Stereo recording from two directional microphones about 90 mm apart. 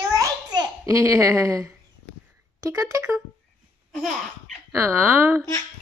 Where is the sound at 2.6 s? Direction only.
40° right (ahead or behind).